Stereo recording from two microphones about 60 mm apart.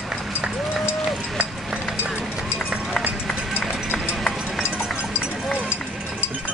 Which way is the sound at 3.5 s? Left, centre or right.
Left.